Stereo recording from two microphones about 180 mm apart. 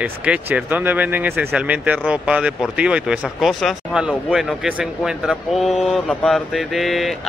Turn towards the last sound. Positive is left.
turn(degrees=0)  # may be behind; listen again after turning